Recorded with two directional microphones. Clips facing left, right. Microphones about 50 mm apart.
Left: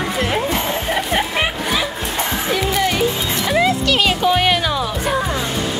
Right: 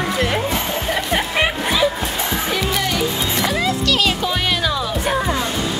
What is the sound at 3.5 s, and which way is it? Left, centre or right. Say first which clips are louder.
Music: left 7 dB; centre.